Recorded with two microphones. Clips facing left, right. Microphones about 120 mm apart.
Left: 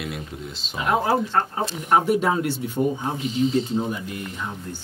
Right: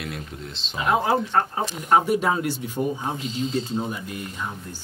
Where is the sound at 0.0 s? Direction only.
5° left (ahead or behind).